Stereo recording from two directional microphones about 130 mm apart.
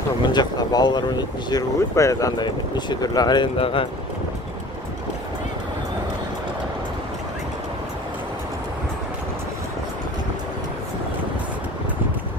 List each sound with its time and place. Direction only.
0.3 s speech: 35° left (ahead or behind)
3.5 s speech: 45° left (ahead or behind)